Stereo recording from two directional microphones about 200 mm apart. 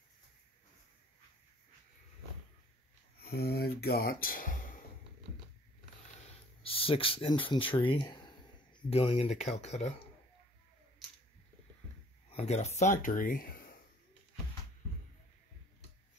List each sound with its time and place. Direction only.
3.2 s speech: 50° left (ahead or behind)
6.6 s speech: 25° left (ahead or behind)
12.3 s speech: 30° left (ahead or behind)